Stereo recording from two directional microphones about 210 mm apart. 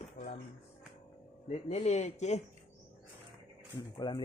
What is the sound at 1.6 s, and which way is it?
Speech, 30° left (ahead or behind).